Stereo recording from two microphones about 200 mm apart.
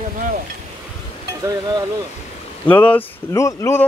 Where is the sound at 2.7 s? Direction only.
10° left (ahead or behind).